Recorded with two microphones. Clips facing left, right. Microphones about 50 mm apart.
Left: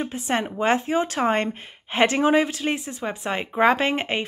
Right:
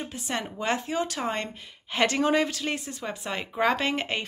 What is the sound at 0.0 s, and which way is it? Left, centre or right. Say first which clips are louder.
A woman's voice: left 7 dB; left.